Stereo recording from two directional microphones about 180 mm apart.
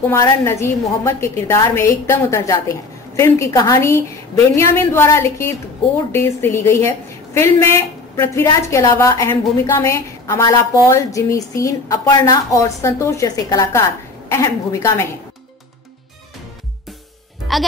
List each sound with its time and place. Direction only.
0.1 s a woman's voice: 15° left (ahead or behind)
17.5 s speech: centre (ahead or behind)